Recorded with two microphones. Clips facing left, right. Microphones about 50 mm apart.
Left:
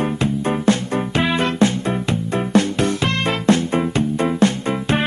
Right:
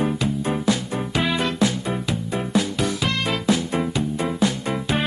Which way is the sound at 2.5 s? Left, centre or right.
Left.